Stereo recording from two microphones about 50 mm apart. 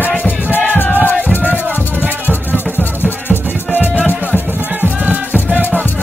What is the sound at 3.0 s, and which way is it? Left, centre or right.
Music, left.